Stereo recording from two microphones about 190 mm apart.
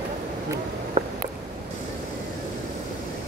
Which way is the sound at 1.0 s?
35° right (ahead or behind).